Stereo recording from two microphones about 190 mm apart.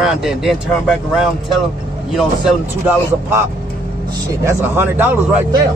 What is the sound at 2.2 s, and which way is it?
Speech, centre (ahead or behind).